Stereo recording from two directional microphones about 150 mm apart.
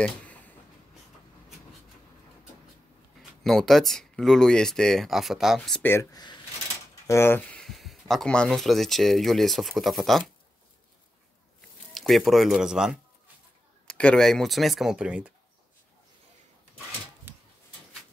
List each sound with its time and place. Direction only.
3.2 s speech: centre (ahead or behind)
7.1 s speech: 15° left (ahead or behind)
11.9 s speech: centre (ahead or behind)
13.8 s speech: 5° left (ahead or behind)
17.3 s a sound: 15° right (ahead or behind)